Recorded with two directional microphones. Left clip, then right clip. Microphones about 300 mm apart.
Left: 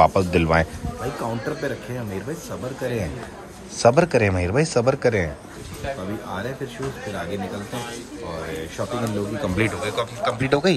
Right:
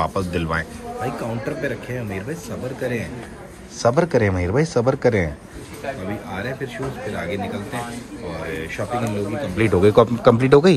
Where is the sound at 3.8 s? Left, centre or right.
Centre.